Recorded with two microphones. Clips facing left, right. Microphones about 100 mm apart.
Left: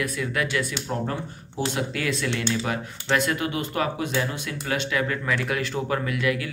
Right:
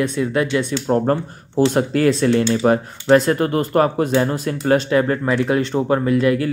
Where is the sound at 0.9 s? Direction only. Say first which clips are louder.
Right 11 dB; 45° right (ahead or behind).